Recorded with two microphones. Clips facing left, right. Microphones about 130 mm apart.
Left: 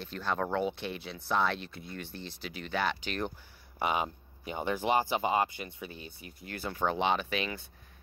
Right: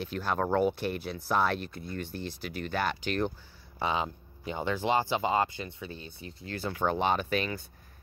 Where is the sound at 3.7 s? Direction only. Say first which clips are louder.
Even; 15° left (ahead or behind).